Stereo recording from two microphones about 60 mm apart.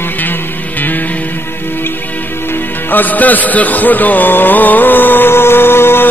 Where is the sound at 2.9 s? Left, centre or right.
Left.